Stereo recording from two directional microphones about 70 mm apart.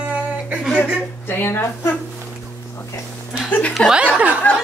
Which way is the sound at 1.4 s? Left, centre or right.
Left.